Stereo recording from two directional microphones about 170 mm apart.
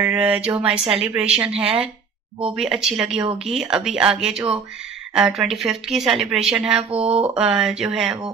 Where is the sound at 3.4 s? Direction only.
Centre (ahead or behind).